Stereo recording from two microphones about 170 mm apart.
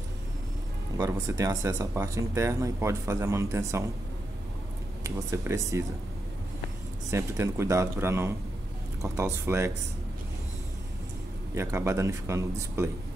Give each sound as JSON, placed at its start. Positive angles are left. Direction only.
{"t": 1.1, "sound": "speech", "side_deg": -20}
{"t": 5.0, "sound": "speech", "side_deg": -15}
{"t": 7.1, "sound": "speech", "side_deg": -15}
{"t": 11.5, "sound": "speech", "side_deg": -15}